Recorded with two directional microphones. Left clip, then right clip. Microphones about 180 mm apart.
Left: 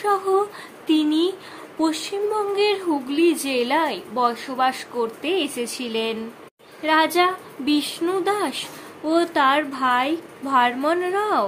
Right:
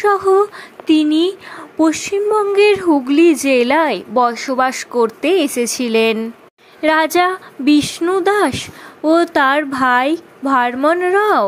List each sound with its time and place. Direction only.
0.0 s a woman's voice: 40° right (ahead or behind)